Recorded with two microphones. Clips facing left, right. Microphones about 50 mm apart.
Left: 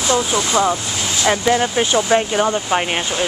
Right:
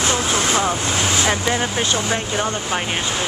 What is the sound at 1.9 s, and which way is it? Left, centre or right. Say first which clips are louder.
Speech: left 6 dB; centre.